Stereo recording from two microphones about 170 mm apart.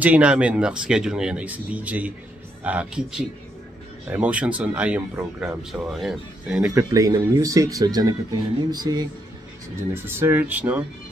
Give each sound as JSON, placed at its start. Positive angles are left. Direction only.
{"t": 0.0, "sound": "speech", "side_deg": -5}
{"t": 6.9, "sound": "speech", "side_deg": -20}
{"t": 10.0, "sound": "speech", "side_deg": -15}